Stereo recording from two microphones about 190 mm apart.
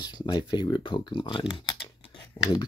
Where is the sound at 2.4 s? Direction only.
10° left (ahead or behind).